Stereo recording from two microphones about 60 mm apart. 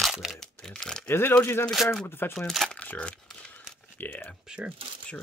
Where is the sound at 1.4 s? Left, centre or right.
Left.